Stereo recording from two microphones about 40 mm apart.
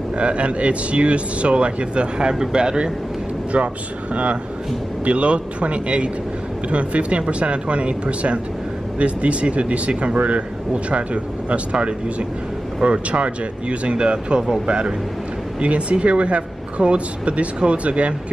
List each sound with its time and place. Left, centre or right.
0.2 s speech: right
3.5 s speech: right